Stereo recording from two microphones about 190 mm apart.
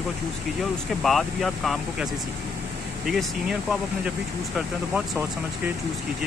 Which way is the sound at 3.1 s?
Centre (ahead or behind).